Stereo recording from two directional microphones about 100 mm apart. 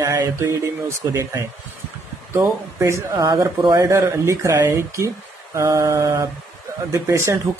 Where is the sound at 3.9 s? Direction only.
30° right (ahead or behind).